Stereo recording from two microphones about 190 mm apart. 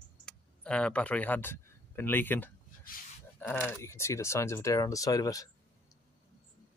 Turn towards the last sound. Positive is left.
turn(degrees=20)  # may be behind; listen again after turning